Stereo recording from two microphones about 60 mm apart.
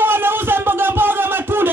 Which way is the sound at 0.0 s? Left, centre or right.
Right.